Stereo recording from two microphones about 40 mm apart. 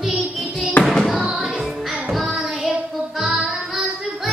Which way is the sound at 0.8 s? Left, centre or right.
Left.